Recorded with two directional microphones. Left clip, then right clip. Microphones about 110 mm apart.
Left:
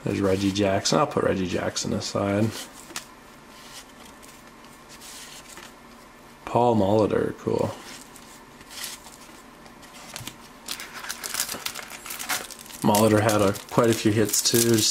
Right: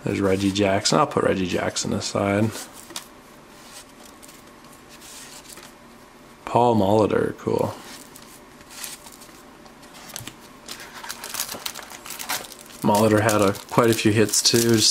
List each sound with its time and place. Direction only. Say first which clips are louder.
0.0 s speech: right 2 dB; 10° right (ahead or behind)
6.4 s speech: right 2 dB; 10° right (ahead or behind)
11.1 s crumpling: even; centre (ahead or behind)
13.3 s speech: right 2 dB; 10° right (ahead or behind)